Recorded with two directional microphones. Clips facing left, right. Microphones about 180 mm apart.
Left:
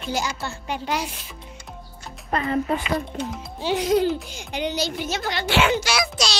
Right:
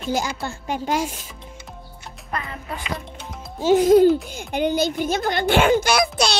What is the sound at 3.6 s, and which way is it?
A child's voice, 50° right (ahead or behind).